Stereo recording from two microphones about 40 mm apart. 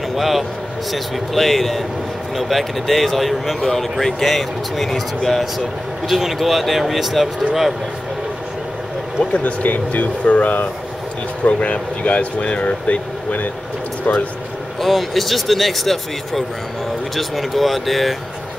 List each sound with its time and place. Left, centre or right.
0.1 s speech: centre
9.2 s speech: left
11.4 s speech: left
14.8 s speech: centre